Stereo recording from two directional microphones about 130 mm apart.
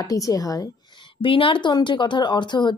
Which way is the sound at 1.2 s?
40° left (ahead or behind).